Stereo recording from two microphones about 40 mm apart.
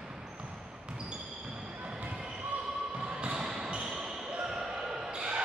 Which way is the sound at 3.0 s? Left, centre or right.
Right.